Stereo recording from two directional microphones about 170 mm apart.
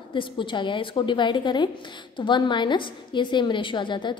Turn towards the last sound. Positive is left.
turn(degrees=30)  # may be behind; listen again after turning